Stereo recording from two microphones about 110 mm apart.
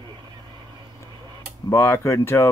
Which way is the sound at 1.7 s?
25° left (ahead or behind).